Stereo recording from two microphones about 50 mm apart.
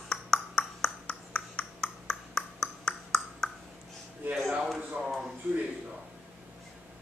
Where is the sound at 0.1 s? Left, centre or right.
Centre.